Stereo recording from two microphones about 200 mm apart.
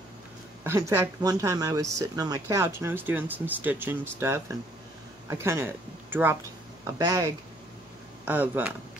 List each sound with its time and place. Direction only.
0.7 s speech: 15° right (ahead or behind)
8.3 s speech: 10° right (ahead or behind)